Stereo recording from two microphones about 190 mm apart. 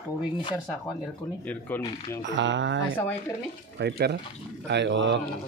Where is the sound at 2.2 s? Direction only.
70° right (ahead or behind).